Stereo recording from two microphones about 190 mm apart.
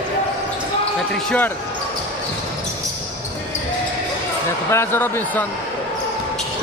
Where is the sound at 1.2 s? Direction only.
10° left (ahead or behind).